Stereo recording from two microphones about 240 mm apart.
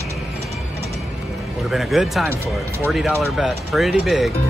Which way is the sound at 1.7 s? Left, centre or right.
Centre.